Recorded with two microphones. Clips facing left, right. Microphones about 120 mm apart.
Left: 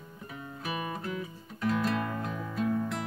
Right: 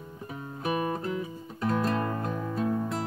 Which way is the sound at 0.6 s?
30° right (ahead or behind).